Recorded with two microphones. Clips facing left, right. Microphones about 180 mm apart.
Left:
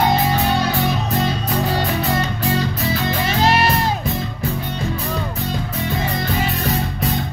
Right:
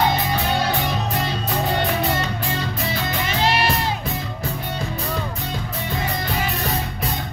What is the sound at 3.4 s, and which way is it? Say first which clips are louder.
Music: left 4 dB; 40° left (ahead or behind).